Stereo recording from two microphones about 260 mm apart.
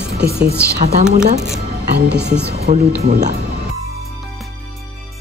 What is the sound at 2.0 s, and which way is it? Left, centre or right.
Speech, right.